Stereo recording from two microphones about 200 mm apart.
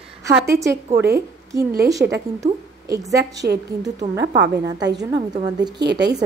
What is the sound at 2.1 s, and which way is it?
A woman's voice, 15° right (ahead or behind).